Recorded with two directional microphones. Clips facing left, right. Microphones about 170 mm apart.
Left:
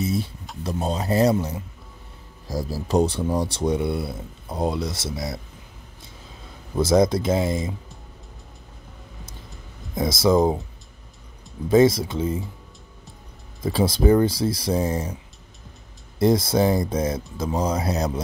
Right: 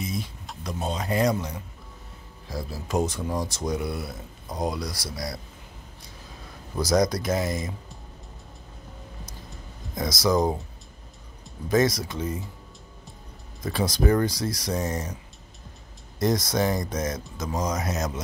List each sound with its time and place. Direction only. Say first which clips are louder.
0.9 s speech: left 5 dB; 35° left (ahead or behind)
2.4 s speech: left 6 dB; 40° left (ahead or behind); by 5.4 s 25° left (ahead or behind)
6.8 s speech: left 4 dB; 25° left (ahead or behind)
9.9 s speech: left 5 dB; 25° left (ahead or behind)
11.7 s speech: left 6 dB; 25° left (ahead or behind)
13.6 s speech: left 5 dB; 25° left (ahead or behind)
16.2 s speech: left 5 dB; 30° left (ahead or behind)